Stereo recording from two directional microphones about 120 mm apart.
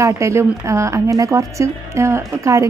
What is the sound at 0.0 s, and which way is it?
A woman's voice, 25° right (ahead or behind).